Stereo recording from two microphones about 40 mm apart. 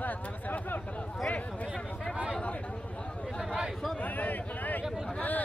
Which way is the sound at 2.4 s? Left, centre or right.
Left.